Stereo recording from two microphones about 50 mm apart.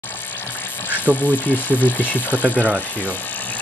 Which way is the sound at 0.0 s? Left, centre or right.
Left.